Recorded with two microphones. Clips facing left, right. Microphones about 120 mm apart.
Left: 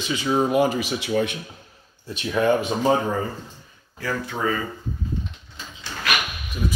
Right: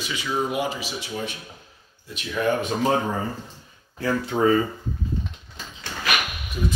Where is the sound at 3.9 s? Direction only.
30° right (ahead or behind).